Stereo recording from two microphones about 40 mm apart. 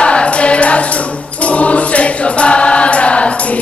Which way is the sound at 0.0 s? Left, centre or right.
Left.